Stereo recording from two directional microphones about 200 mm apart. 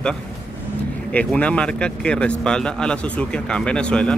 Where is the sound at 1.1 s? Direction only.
5° left (ahead or behind).